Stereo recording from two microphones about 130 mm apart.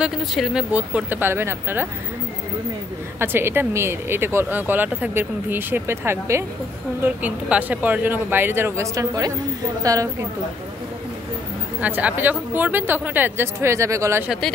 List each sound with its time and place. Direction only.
0.3 s speech: centre (ahead or behind); by 1.9 s 20° right (ahead or behind)
3.2 s speech: 20° right (ahead or behind)
11.8 s speech: 10° right (ahead or behind)